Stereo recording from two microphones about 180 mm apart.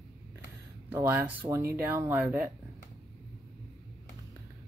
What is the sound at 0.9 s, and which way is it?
Speech, 10° right (ahead or behind).